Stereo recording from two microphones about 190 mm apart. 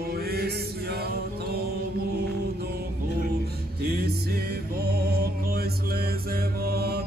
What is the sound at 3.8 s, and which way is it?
Music, 55° right (ahead or behind).